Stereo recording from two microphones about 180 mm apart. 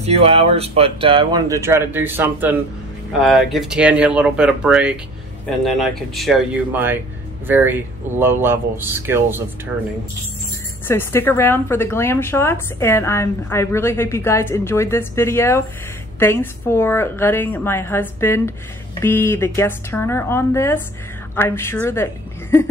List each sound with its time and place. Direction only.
0.0 s speech: 35° right (ahead or behind); by 2.5 s 10° right (ahead or behind)
3.1 s speech: centre (ahead or behind)
6.7 s speech: 10° right (ahead or behind)
10.9 s a woman's voice: 15° left (ahead or behind)